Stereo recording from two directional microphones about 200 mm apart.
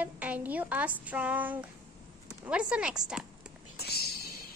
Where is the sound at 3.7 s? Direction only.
55° left (ahead or behind).